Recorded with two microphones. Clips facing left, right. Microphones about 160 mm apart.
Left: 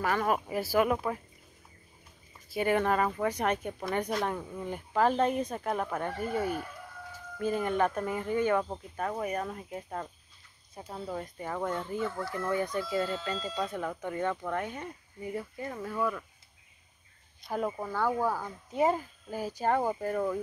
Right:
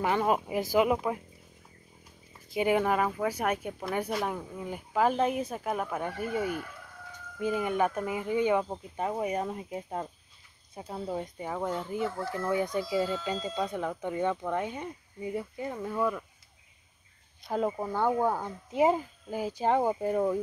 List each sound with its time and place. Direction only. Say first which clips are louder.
0.0 s speech: right 2 dB; 20° right (ahead or behind)
2.5 s speech: right 1 dB; 15° right (ahead or behind)
17.5 s speech: right 3 dB; 25° right (ahead or behind)